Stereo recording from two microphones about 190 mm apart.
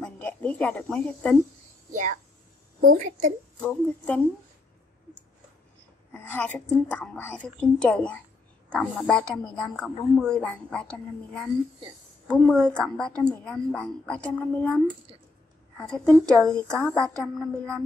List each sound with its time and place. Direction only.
0.0 s a sound: 5° left (ahead or behind)
1.9 s a woman's voice: 40° right (ahead or behind)
3.6 s a woman's voice: 5° left (ahead or behind)
6.1 s a woman's voice: 10° left (ahead or behind)
15.8 s a woman's voice: 5° left (ahead or behind)